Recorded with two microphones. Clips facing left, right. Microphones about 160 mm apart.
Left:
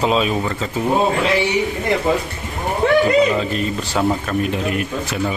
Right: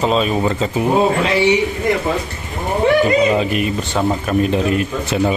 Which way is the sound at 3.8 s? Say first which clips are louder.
Right 1 dB; centre (ahead or behind).